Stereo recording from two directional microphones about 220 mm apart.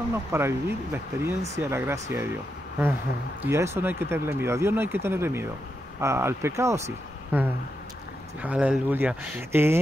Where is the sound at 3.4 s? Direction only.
10° right (ahead or behind).